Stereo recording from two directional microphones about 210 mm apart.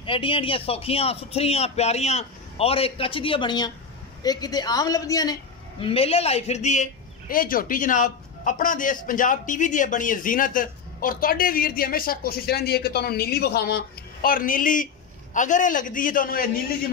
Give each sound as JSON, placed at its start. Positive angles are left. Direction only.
{"t": 0.0, "sound": "a woman's voice", "side_deg": 25}